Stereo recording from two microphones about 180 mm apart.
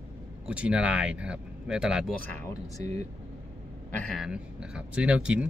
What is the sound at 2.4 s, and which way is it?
Speech, 20° left (ahead or behind).